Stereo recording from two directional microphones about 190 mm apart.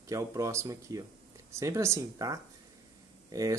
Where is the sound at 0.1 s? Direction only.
15° right (ahead or behind).